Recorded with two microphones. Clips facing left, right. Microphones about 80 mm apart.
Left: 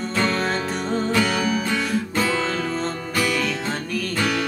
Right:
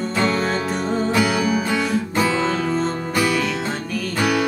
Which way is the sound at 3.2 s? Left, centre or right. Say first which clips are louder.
Right 3 dB; centre.